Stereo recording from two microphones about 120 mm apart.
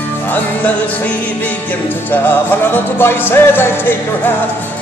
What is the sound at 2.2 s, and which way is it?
Music, 20° left (ahead or behind).